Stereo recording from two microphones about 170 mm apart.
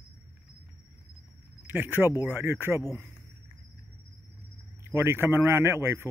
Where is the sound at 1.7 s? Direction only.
10° right (ahead or behind).